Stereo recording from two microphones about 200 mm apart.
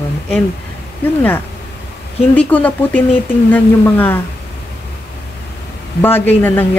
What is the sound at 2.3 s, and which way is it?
Speech, 5° left (ahead or behind).